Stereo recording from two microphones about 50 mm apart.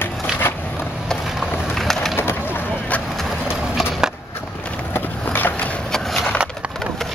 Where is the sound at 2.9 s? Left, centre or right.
Left.